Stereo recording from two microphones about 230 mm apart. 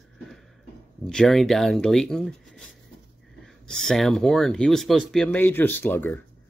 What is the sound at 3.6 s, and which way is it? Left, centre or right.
Speech, centre.